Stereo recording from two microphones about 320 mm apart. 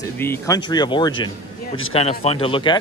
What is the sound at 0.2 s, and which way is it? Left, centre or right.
A man's voice, centre.